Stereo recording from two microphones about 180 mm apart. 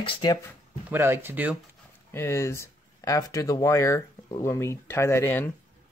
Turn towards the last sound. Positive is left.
turn(degrees=10)  # may be behind; listen again after turning